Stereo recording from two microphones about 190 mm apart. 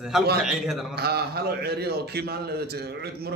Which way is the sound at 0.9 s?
55° right (ahead or behind).